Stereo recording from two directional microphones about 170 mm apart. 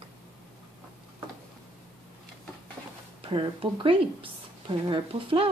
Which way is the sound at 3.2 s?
30° right (ahead or behind).